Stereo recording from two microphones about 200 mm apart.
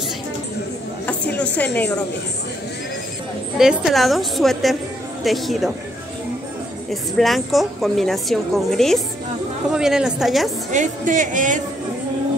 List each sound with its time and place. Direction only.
1.0 s a sound: 5° left (ahead or behind)
3.5 s a woman's voice: centre (ahead or behind)
6.9 s a woman's voice: centre (ahead or behind)
10.7 s speech: 40° right (ahead or behind)